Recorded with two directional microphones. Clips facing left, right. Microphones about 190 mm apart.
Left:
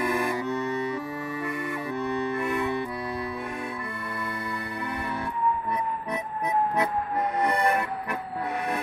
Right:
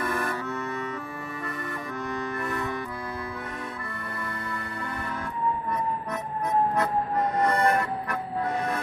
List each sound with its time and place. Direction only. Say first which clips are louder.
0.0 s music: left 3 dB; 15° left (ahead or behind)
2.3 s music: left 4 dB; 10° left (ahead or behind)
7.4 s music: right 1 dB; 15° left (ahead or behind)